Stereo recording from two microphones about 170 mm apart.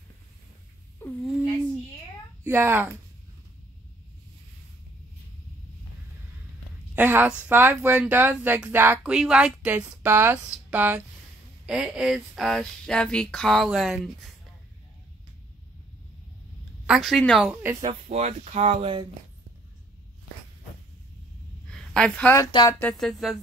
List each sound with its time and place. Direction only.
2.4 s speech: 15° right (ahead or behind)
7.0 s speech: 10° right (ahead or behind)
16.8 s speech: centre (ahead or behind)
18.0 s speech: 40° right (ahead or behind)
21.6 s a sound: 5° left (ahead or behind)
22.5 s speech: 25° left (ahead or behind)
22.8 s speech: 5° left (ahead or behind)